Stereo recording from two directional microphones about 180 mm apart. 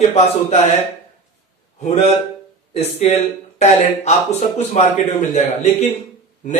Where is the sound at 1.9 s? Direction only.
35° left (ahead or behind).